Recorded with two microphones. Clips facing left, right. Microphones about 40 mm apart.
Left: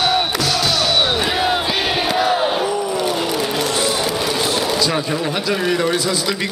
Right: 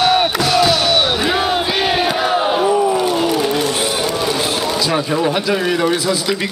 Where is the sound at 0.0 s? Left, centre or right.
Centre.